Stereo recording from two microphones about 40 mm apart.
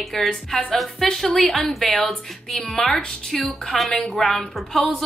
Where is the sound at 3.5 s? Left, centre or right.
Centre.